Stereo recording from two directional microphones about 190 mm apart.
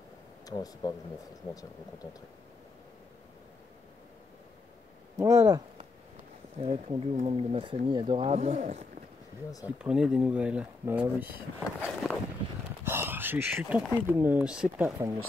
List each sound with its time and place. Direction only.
0.5 s speech: 20° left (ahead or behind)
5.1 s speech: 15° right (ahead or behind)
6.6 s speech: 30° right (ahead or behind)
9.8 s speech: 5° right (ahead or behind)